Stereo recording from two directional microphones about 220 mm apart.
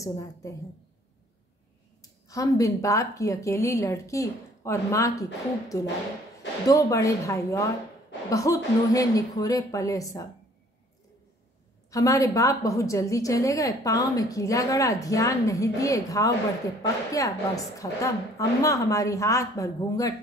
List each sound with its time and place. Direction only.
0.0 s a woman's voice: 15° left (ahead or behind)
2.0 s a woman's voice: 15° left (ahead or behind)
11.9 s a woman's voice: 15° left (ahead or behind)